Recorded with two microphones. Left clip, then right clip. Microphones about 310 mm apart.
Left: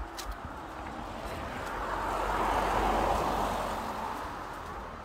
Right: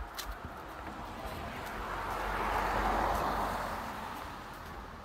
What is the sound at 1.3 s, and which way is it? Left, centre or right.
Vehicle, centre.